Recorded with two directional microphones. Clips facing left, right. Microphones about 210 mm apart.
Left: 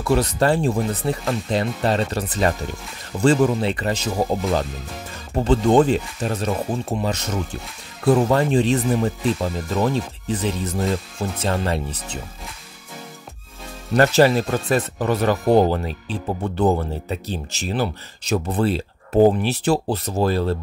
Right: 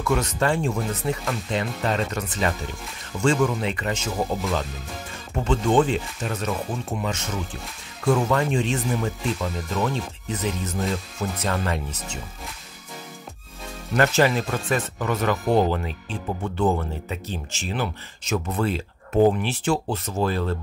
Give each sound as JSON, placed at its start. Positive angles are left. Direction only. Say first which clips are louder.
{"t": 0.0, "sound": "speech", "louder": "left 4 dB", "side_deg": 35}
{"t": 13.9, "sound": "speech", "louder": "left 5 dB", "side_deg": 35}